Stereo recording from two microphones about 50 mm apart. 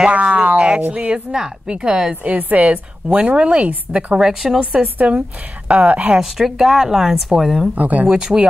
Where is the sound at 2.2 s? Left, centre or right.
Right.